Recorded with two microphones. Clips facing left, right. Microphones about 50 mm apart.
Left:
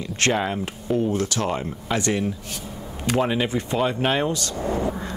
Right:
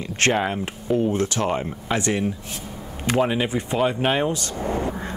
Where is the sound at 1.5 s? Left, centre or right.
Centre.